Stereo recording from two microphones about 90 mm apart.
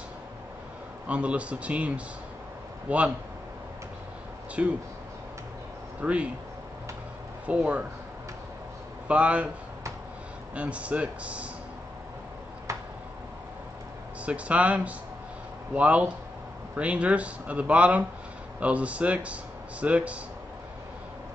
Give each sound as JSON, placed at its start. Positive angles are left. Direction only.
{"t": 1.0, "sound": "a man's voice", "side_deg": -15}
{"t": 4.6, "sound": "a man's voice", "side_deg": -10}
{"t": 5.9, "sound": "speech", "side_deg": -15}
{"t": 7.4, "sound": "a man's voice", "side_deg": -15}
{"t": 9.0, "sound": "a man's voice", "side_deg": -15}
{"t": 10.5, "sound": "a man's voice", "side_deg": -15}
{"t": 12.7, "sound": "a sound", "side_deg": -35}
{"t": 14.2, "sound": "a man's voice", "side_deg": -15}